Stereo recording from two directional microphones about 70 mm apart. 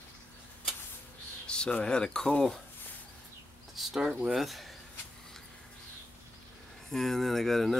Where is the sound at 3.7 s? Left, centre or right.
Centre.